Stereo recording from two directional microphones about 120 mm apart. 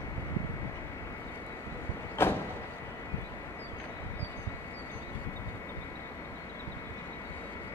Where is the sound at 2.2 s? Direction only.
20° left (ahead or behind).